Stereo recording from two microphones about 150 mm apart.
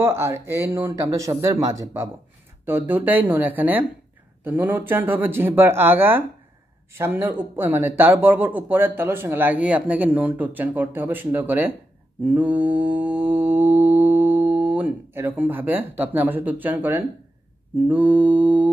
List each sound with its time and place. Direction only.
0.0 s speech: 15° right (ahead or behind)
12.3 s mantra: 10° right (ahead or behind)
17.8 s speech: 10° right (ahead or behind)